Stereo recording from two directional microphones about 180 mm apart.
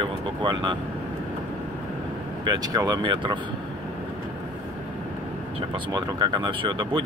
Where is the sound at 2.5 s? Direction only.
20° right (ahead or behind).